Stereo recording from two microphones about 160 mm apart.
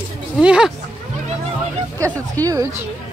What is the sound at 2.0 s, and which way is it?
Speech, 10° left (ahead or behind).